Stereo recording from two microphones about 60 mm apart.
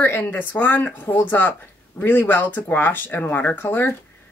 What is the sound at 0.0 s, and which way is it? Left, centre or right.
Speech, left.